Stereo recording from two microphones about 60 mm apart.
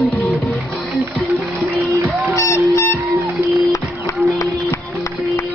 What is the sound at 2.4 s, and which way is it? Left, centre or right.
Music, left.